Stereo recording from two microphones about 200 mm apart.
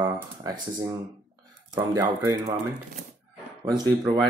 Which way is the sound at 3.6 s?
20° right (ahead or behind).